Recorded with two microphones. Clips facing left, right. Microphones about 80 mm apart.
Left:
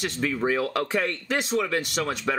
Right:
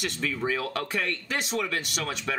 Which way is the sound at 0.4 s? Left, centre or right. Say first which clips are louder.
Left 5 dB; left.